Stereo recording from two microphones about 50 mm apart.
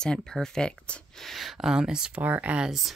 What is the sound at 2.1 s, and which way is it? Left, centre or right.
Speech, right.